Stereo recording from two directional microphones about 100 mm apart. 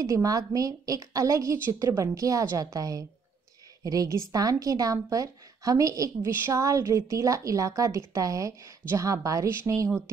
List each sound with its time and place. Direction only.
0.1 s a woman's voice: 35° right (ahead or behind)